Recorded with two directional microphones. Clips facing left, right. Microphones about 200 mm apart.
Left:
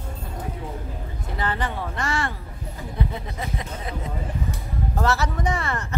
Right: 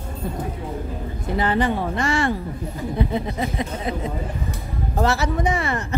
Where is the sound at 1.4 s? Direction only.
15° right (ahead or behind).